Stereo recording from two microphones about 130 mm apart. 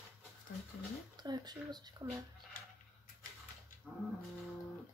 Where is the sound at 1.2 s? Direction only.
35° right (ahead or behind).